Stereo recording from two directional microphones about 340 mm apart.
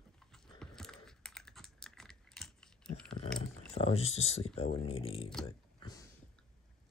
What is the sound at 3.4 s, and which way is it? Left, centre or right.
Speech, centre.